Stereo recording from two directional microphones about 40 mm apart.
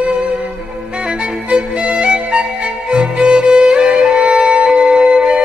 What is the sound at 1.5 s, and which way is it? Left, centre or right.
Music, right.